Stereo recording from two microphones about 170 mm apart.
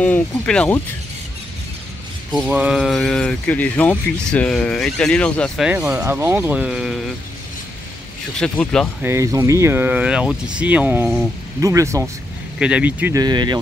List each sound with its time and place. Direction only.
0.0 s speech: 5° left (ahead or behind)
2.3 s speech: 5° right (ahead or behind)
5.7 s speech: 10° right (ahead or behind)
8.4 s speech: 5° left (ahead or behind)
9.0 s speech: 20° right (ahead or behind)
12.5 s speech: 5° right (ahead or behind)
13.1 s speech: 25° right (ahead or behind)